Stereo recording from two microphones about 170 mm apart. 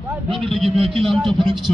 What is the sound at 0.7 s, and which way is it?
Speech, 30° right (ahead or behind).